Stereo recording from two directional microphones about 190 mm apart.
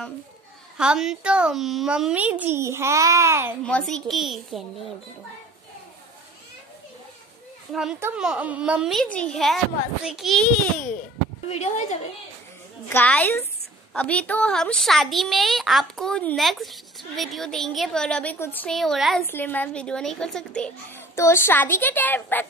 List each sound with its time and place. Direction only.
0.7 s a woman's voice: 5° right (ahead or behind)
3.6 s a child's voice: 5° left (ahead or behind)
8.2 s a child's voice: 5° right (ahead or behind)
11.4 s a woman's voice: 35° left (ahead or behind)
12.9 s a child's voice: 10° left (ahead or behind)